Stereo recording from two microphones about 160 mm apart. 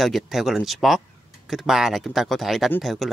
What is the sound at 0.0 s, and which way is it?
A man's voice, centre (ahead or behind).